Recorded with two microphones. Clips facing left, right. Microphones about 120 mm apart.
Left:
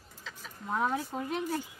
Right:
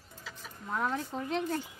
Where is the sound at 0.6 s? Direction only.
15° left (ahead or behind).